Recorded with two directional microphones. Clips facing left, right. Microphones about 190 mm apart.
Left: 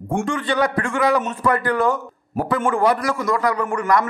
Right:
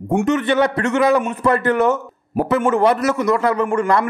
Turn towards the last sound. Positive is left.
turn(degrees=-25)  # may be behind; listen again after turning